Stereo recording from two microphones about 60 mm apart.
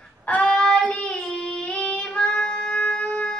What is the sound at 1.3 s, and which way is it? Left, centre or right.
Music, centre.